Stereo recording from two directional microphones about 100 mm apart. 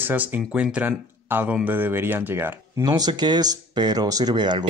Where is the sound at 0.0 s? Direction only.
15° right (ahead or behind).